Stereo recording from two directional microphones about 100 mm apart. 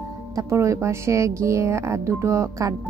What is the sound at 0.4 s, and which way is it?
Speech, 30° right (ahead or behind).